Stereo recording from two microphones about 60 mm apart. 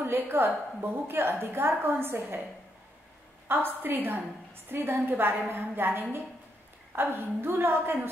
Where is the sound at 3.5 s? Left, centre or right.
Right.